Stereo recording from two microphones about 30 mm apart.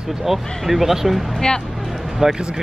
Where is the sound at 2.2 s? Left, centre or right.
Right.